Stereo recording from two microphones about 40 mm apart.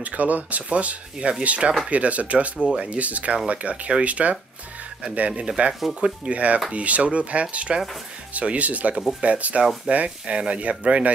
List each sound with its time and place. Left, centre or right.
0.0 s speech: right
5.9 s speech: right
6.3 s speech: right